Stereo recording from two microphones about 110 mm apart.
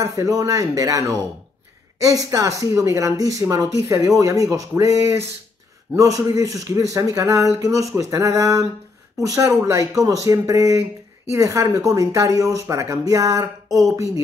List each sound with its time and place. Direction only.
0.0 s speech: 30° right (ahead or behind)